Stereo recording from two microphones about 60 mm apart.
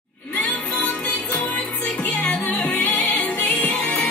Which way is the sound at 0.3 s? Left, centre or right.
Left.